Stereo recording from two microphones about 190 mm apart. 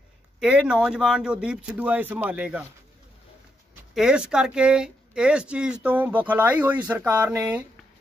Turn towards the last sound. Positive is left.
turn(degrees=-10)  # may be behind; listen again after turning